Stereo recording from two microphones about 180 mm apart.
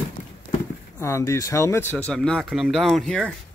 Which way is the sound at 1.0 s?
15° left (ahead or behind).